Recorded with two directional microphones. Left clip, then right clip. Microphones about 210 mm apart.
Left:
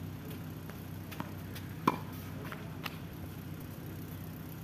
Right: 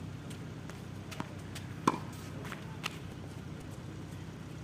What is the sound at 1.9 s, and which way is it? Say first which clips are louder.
Chopping: even; 15° right (ahead or behind).